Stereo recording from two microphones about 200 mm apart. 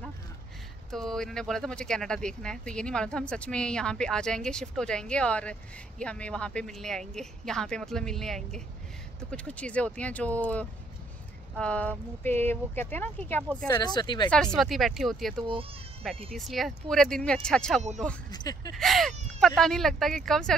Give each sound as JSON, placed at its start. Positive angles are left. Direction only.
{"t": 0.9, "sound": "speech", "side_deg": 0}
{"t": 13.7, "sound": "speech", "side_deg": 20}
{"t": 14.3, "sound": "speech", "side_deg": 5}
{"t": 18.3, "sound": "speech", "side_deg": 20}
{"t": 18.8, "sound": "speech", "side_deg": 0}